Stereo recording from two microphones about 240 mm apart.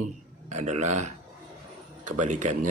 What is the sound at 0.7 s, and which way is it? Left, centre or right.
Speech, right.